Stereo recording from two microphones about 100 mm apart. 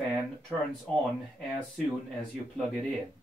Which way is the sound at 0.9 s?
10° left (ahead or behind).